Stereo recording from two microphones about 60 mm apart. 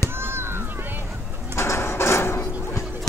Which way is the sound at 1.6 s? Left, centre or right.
Left.